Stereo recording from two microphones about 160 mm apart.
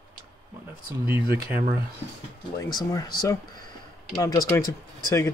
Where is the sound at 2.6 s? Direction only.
25° left (ahead or behind).